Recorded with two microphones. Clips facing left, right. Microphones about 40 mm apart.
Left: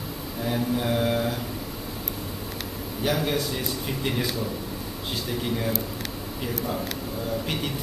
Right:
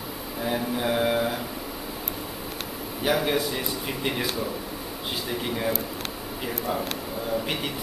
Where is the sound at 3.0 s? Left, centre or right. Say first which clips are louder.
Right 2 dB; centre.